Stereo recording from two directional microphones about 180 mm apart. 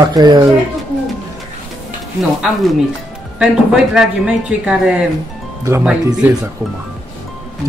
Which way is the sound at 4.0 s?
5° right (ahead or behind).